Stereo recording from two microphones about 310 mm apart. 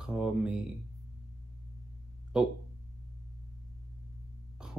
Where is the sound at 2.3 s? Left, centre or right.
Centre.